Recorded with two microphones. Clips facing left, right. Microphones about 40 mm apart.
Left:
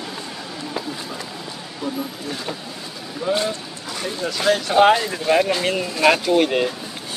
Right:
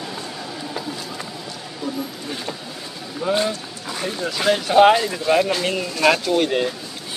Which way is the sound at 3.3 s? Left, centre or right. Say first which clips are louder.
Right 1 dB; centre.